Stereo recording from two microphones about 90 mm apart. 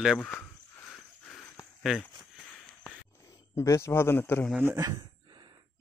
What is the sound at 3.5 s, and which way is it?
Speech, 30° left (ahead or behind).